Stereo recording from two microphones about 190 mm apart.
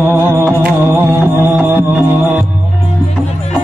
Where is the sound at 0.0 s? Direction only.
10° right (ahead or behind).